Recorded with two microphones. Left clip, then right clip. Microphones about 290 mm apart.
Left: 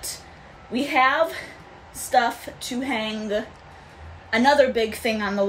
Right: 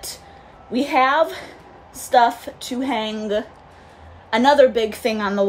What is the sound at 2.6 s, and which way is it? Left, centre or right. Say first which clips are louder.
Speech: right 3 dB; centre.